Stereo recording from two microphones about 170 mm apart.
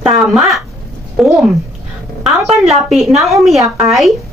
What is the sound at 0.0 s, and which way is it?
Speech, 5° right (ahead or behind).